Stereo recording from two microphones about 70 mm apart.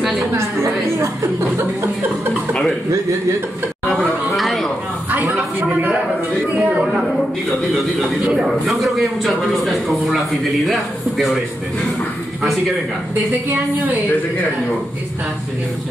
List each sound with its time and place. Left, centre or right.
0.6 s a woman's voice: right
2.3 s a sound: centre
3.9 s chatter: centre
6.5 s a sound: right
6.9 s a man's voice: centre
13.5 s a woman's voice: right